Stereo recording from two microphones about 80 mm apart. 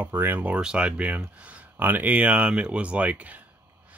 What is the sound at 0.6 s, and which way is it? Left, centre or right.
Speech, centre.